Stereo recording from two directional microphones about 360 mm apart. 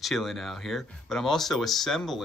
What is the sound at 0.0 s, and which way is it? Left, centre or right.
Speech, centre.